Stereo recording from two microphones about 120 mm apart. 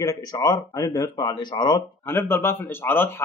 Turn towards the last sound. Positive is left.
turn(degrees=20)  # may be behind; listen again after turning